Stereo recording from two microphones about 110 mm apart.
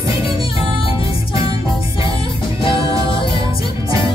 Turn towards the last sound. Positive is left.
turn(degrees=50)  # may be behind; listen again after turning